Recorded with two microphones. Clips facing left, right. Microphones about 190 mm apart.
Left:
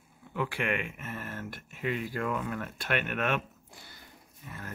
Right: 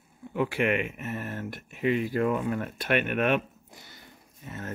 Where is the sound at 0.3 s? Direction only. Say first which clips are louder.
Right 6 dB; 20° right (ahead or behind).